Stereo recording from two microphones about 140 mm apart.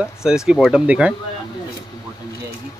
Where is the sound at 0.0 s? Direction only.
5° right (ahead or behind).